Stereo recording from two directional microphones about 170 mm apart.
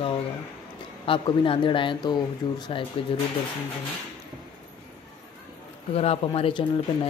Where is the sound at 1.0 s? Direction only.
30° left (ahead or behind).